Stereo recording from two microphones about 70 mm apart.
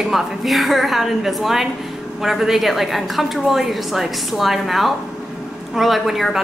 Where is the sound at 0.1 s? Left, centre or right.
Centre.